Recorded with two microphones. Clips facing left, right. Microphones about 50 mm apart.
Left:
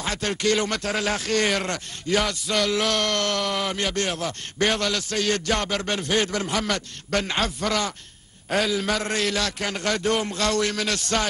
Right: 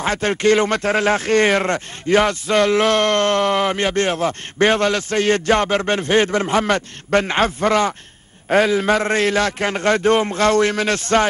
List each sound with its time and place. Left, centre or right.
0.0 s speech: right